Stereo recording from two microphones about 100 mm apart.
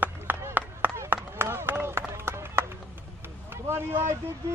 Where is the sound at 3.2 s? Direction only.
25° right (ahead or behind).